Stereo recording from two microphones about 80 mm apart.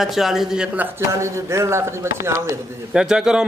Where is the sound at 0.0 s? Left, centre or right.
Centre.